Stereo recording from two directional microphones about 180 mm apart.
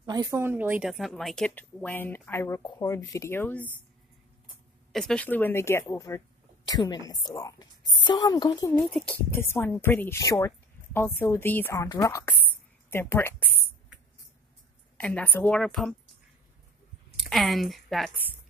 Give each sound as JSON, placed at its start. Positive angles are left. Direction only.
{"t": 0.0, "sound": "speech", "side_deg": -20}
{"t": 4.9, "sound": "speech", "side_deg": 5}
{"t": 8.9, "sound": "speech", "side_deg": 10}
{"t": 15.0, "sound": "a woman's voice", "side_deg": 5}
{"t": 17.3, "sound": "speech", "side_deg": 0}